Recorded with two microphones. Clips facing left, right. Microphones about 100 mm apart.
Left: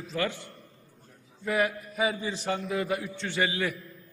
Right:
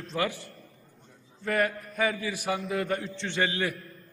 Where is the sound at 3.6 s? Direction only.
Centre (ahead or behind).